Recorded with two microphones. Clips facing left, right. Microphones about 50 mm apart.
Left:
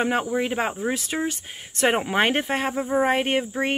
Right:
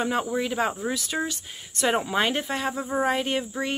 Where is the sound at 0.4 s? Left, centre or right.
Left.